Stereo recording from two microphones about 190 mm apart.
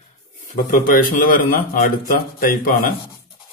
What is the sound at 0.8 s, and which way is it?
Speech, 50° left (ahead or behind).